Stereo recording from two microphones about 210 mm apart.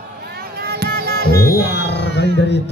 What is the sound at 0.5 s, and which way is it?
Music, 50° right (ahead or behind).